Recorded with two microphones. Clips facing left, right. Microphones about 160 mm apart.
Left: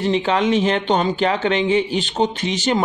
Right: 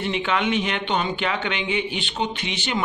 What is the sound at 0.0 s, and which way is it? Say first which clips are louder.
Speech: left 6 dB; 35° left (ahead or behind).